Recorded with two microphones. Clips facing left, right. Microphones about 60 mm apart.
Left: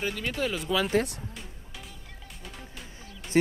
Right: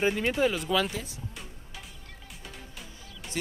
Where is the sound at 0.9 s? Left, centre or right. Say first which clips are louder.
Left 12 dB; left.